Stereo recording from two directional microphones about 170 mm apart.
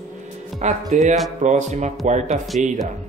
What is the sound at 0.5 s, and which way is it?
Speech, 45° right (ahead or behind).